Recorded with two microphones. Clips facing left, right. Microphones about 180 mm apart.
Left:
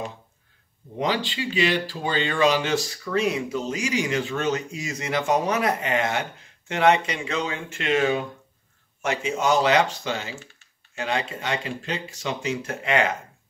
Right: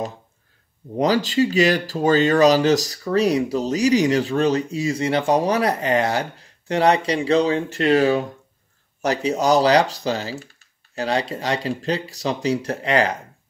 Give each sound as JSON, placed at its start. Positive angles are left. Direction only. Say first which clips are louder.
{"t": 0.9, "sound": "speech", "louder": "right 8 dB", "side_deg": -40}